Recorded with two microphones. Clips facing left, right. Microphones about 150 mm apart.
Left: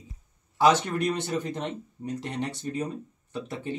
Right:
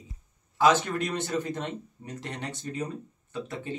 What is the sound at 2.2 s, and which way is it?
Speech, 20° left (ahead or behind).